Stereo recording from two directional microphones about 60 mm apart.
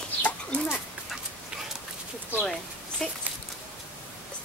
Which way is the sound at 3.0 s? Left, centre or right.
Centre.